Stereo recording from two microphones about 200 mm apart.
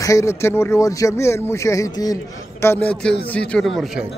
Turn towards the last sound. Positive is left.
turn(degrees=0)  # may be behind; listen again after turning